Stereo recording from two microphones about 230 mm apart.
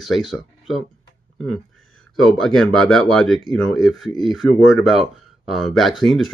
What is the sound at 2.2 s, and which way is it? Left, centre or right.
Speech, centre.